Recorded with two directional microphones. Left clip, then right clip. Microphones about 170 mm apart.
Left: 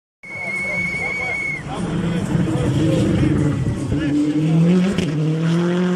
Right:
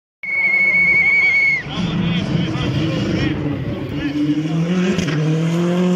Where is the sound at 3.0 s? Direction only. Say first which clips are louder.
Left 1 dB; centre (ahead or behind).